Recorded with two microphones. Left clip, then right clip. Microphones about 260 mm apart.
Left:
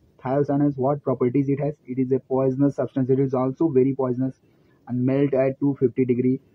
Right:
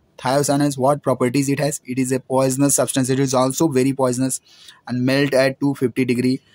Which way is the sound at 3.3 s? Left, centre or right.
Right.